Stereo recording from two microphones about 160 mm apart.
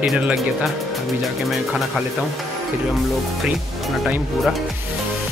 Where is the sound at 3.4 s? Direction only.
Centre (ahead or behind).